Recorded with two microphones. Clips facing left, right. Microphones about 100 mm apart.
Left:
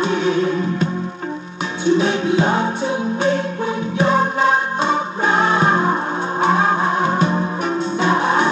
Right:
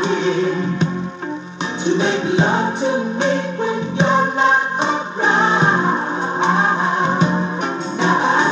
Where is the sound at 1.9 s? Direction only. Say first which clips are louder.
Even; 25° right (ahead or behind).